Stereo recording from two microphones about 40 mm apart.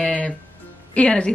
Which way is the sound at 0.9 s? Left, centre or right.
Left.